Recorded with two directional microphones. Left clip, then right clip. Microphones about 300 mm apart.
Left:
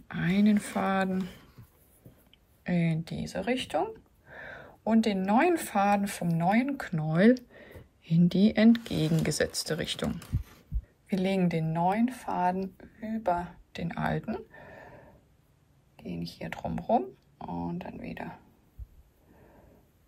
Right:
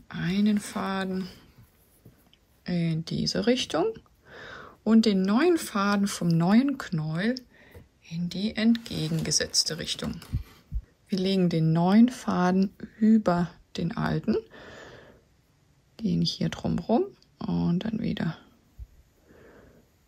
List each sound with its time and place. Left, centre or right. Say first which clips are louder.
0.1 s speech: left 1 dB; centre
14.5 s a sound: right 3 dB; right
16.0 s speech: right 10 dB; right